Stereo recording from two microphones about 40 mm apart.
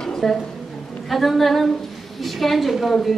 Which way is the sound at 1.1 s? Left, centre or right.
Centre.